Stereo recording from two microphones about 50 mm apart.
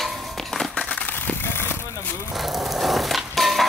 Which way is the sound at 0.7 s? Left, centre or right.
Left.